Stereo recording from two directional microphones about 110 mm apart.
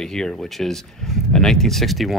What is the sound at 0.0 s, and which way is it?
Speech, 5° left (ahead or behind).